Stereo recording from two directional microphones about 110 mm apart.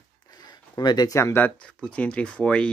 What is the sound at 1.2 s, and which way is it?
Speech, 20° left (ahead or behind).